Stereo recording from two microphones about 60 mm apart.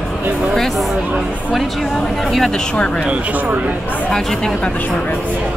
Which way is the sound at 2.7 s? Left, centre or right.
Centre.